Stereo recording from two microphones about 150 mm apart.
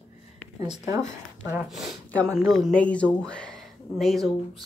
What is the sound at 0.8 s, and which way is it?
Speech, 20° right (ahead or behind).